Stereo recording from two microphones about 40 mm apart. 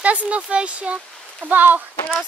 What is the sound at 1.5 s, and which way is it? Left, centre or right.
Speech, right.